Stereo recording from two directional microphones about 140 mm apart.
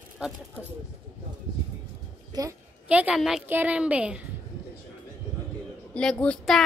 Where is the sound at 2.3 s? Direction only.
25° right (ahead or behind).